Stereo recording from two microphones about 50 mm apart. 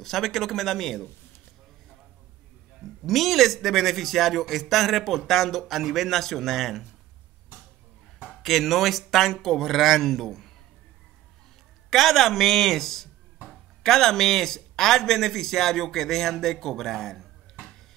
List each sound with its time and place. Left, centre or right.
0.0 s a man's voice: centre
2.8 s a man's voice: centre
8.4 s a man's voice: centre
11.9 s a man's voice: centre